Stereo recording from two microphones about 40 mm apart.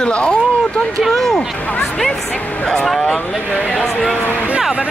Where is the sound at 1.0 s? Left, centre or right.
Centre.